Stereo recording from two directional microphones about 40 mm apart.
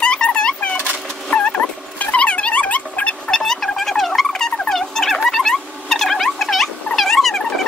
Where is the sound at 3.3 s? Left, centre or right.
Centre.